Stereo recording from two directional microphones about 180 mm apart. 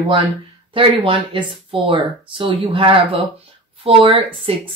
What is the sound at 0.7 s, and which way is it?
Speech, 30° right (ahead or behind).